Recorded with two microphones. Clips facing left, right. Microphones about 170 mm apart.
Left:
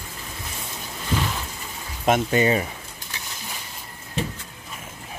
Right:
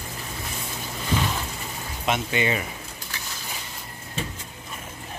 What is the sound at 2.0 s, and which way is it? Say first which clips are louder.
Speech: left 6 dB; 45° left (ahead or behind).